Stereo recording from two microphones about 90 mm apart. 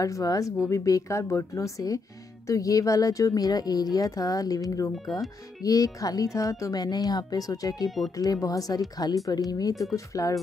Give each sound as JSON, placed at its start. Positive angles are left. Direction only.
{"t": 0.0, "sound": "speech", "side_deg": 40}